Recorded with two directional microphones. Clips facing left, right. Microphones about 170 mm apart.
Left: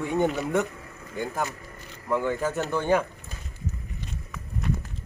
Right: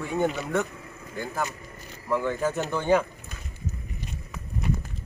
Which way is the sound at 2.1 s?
5° left (ahead or behind).